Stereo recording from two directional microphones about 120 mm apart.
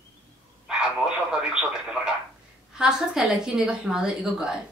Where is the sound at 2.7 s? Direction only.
5° right (ahead or behind).